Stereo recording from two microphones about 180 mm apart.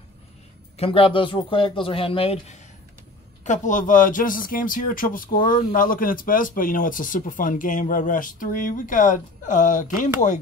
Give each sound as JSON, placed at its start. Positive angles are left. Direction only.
{"t": 0.7, "sound": "speech", "side_deg": 30}